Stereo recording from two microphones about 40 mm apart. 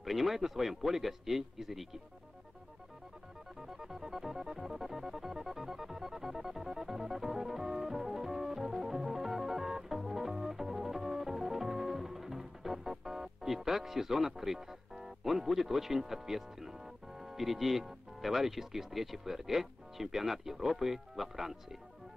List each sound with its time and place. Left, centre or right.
0.0 s speech: centre
3.6 s music: centre
17.2 s speech: centre